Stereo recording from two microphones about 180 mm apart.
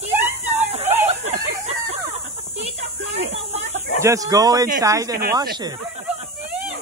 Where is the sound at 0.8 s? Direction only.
10° right (ahead or behind).